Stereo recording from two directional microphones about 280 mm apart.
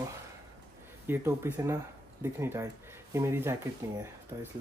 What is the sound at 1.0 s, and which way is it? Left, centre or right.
Speech, centre.